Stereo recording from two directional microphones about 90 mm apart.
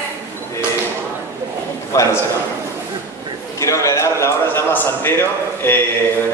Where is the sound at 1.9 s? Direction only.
35° left (ahead or behind).